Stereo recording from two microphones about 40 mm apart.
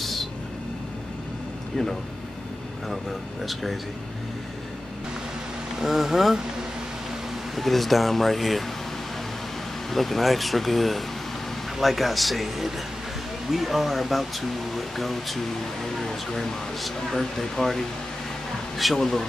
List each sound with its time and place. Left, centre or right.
0.0 s vehicle: centre
2.9 s speech: centre
5.8 s speech: centre
7.5 s speech: centre
9.8 s speech: centre